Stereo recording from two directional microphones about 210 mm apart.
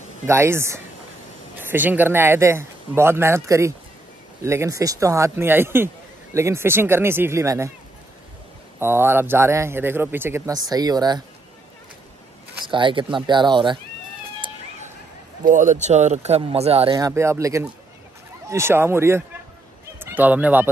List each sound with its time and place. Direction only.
0.3 s a man's voice: 10° right (ahead or behind)
8.7 s a man's voice: 10° right (ahead or behind)
12.6 s speech: 25° right (ahead or behind)
15.4 s speech: 35° right (ahead or behind)
16.9 s a man's voice: 15° right (ahead or behind)